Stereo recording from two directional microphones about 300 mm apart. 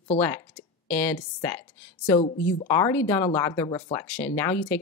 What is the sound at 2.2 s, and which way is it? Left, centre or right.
Speech, left.